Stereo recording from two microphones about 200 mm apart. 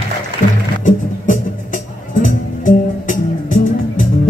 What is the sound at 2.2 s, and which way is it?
Music, 40° left (ahead or behind).